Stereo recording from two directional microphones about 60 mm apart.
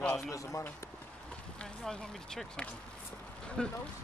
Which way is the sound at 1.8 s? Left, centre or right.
Centre.